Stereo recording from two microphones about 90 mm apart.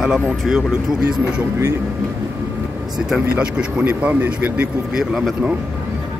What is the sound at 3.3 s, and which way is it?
Speech, 15° right (ahead or behind).